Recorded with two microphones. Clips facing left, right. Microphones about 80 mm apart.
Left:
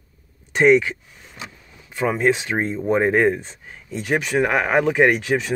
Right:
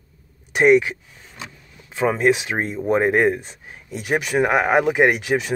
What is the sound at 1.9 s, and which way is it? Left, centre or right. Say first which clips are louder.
Speech: right 1 dB; right.